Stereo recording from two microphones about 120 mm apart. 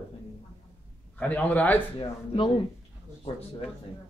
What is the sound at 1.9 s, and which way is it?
Speech, 45° left (ahead or behind).